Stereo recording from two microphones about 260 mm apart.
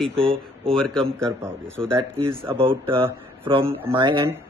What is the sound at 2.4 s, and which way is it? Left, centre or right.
Speech, right.